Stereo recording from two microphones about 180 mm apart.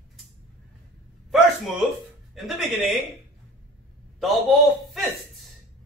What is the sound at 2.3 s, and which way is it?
Speech, centre (ahead or behind).